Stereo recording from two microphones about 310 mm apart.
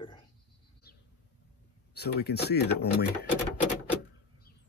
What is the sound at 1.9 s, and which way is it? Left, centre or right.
Speech, left.